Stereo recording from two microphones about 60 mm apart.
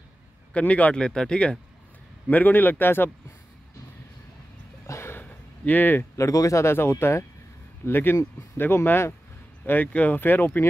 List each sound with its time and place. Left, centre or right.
0.5 s speech: left
2.2 s speech: left
4.8 s a sound: left
5.2 s a sound: left
6.1 s speech: left
6.7 s speech: left
7.8 s speech: left
9.7 s speech: left